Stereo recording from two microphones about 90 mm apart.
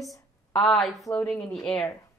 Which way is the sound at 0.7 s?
Centre (ahead or behind).